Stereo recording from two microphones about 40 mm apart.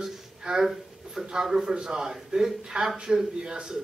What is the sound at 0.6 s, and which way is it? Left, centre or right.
Speech, centre.